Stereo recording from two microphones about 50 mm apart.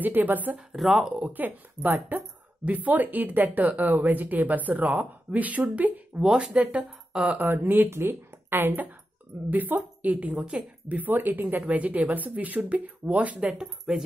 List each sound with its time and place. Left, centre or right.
0.0 s speech: right
0.7 s speech: centre
1.2 s speech: right
6.2 s speech: centre
6.5 s a woman's voice: right
7.4 s speech: right
10.3 s a woman's voice: right
11.0 s speech: right
13.5 s speech: centre